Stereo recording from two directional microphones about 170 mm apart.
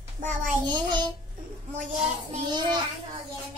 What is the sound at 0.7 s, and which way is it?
Speech, 25° right (ahead or behind).